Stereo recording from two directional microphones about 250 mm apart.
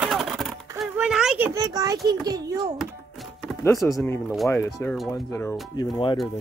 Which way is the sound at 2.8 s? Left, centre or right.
Centre.